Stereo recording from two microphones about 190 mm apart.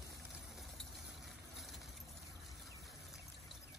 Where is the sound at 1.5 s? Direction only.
Centre (ahead or behind).